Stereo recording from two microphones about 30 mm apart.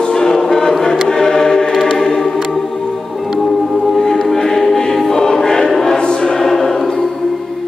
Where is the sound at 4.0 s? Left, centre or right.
Centre.